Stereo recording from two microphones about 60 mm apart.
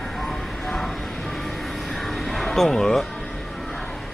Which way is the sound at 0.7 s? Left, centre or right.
Centre.